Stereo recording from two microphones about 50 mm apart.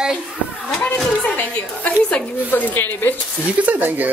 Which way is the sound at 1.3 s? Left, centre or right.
Left.